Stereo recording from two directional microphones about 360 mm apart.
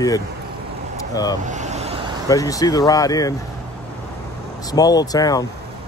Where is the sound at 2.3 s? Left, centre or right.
Centre.